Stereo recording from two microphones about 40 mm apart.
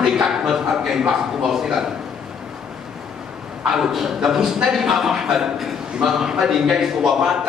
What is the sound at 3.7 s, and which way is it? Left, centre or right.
A man's voice, centre.